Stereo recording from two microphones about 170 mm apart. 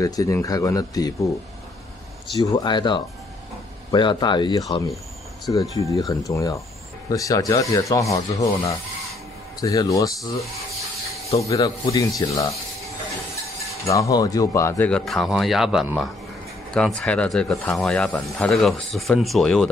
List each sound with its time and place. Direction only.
0.0 s speech: 20° left (ahead or behind)
2.5 s speech: 25° left (ahead or behind)
11.3 s speech: 20° left (ahead or behind)
13.8 s speech: 20° left (ahead or behind)
14.9 s speech: 5° left (ahead or behind)